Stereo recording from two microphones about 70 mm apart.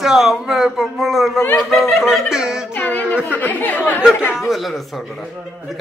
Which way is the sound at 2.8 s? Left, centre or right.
Left.